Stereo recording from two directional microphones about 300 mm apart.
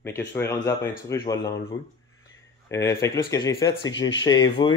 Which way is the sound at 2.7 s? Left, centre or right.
Centre.